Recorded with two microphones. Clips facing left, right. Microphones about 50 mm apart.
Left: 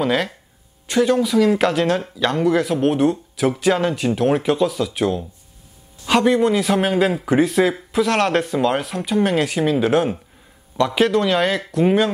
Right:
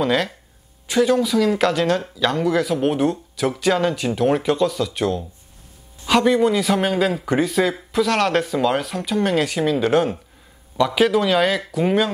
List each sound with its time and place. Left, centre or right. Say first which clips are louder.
0.0 s speech: even; centre